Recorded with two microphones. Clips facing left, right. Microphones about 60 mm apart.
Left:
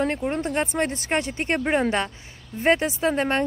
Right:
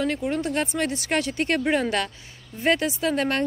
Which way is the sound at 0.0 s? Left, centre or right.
Left.